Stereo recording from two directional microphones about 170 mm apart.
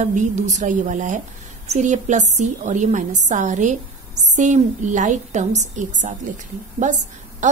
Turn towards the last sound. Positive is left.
turn(degrees=-45)  # may be behind; listen again after turning